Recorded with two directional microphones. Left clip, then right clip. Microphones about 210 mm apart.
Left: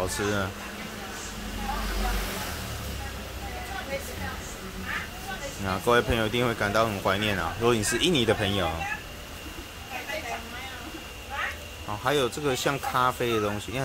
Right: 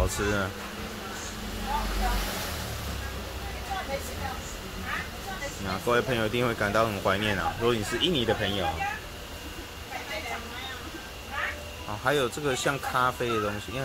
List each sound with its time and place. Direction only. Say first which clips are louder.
0.0 s speech: even; 5° left (ahead or behind)
5.7 s speech: left 3 dB; 15° left (ahead or behind)
7.7 s speech: left 2 dB; 25° left (ahead or behind)
12.0 s speech: left 1 dB; 15° left (ahead or behind)